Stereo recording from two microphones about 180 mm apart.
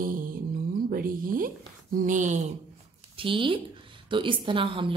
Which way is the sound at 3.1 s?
30° right (ahead or behind).